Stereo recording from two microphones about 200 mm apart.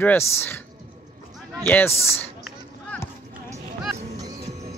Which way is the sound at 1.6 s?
10° left (ahead or behind).